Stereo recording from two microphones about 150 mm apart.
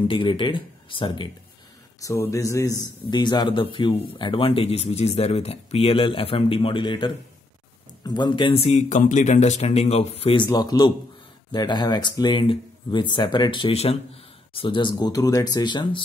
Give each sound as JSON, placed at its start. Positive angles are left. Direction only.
{"t": 0.1, "sound": "a man's voice", "side_deg": 35}
{"t": 2.0, "sound": "a man's voice", "side_deg": 20}
{"t": 10.5, "sound": "a man's voice", "side_deg": 25}